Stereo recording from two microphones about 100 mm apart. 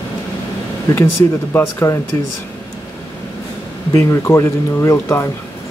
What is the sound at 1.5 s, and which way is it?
Speech, 20° left (ahead or behind).